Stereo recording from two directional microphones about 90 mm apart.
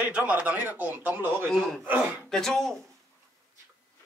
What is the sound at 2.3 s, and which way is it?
Speech, 5° left (ahead or behind).